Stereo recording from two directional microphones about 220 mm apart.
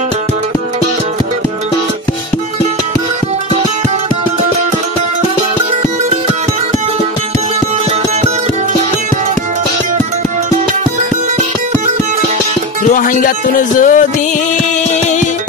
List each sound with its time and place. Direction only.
12.8 s music: 35° left (ahead or behind)